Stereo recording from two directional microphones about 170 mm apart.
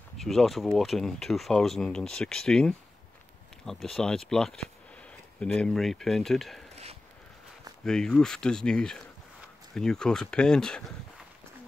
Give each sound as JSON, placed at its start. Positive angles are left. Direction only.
{"t": 0.2, "sound": "speech", "side_deg": 0}
{"t": 6.7, "sound": "a sound", "side_deg": -40}
{"t": 7.8, "sound": "speech", "side_deg": 5}